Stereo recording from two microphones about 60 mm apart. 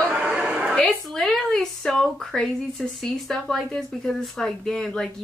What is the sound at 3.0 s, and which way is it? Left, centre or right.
A woman's voice, centre.